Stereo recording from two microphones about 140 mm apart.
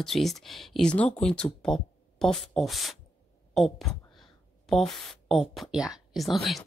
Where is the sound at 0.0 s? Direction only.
Centre (ahead or behind).